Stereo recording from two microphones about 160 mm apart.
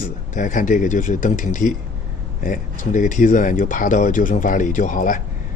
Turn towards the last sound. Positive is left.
turn(degrees=55)  # may be behind; listen again after turning